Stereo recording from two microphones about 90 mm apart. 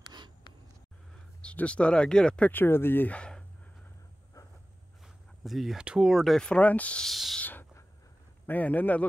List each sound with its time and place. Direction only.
1.4 s speech: 15° left (ahead or behind)
2.5 s speech: 25° left (ahead or behind)
5.0 s speech: centre (ahead or behind); by 7.1 s 15° left (ahead or behind)
7.1 s a sound: centre (ahead or behind)
7.3 s owl: 20° left (ahead or behind)
8.5 s speech: 20° left (ahead or behind)